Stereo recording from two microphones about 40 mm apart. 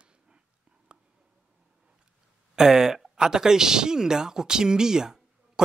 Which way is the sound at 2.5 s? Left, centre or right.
Centre.